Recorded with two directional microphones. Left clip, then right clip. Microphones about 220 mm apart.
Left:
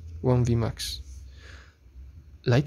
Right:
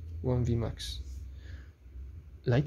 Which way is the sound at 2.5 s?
20° left (ahead or behind).